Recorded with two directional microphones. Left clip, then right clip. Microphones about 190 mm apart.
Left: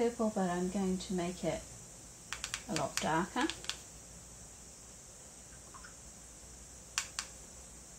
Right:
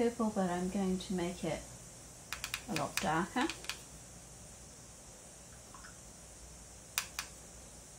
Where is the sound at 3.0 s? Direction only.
20° left (ahead or behind).